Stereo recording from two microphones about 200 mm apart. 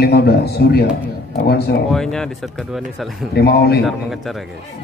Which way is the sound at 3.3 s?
55° left (ahead or behind).